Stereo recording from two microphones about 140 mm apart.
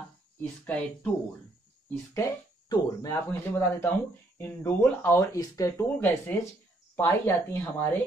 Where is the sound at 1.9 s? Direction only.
20° left (ahead or behind).